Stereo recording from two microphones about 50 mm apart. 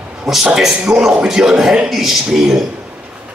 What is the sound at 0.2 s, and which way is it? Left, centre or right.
A man's voice, centre.